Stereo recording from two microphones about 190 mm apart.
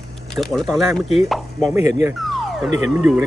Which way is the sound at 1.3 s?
Centre (ahead or behind).